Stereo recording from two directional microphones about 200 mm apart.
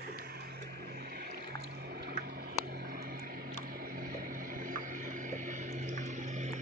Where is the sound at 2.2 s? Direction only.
50° right (ahead or behind).